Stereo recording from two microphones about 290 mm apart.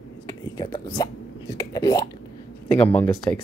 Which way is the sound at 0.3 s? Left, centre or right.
Centre.